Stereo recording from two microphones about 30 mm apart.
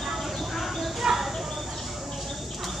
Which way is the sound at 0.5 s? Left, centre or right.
Centre.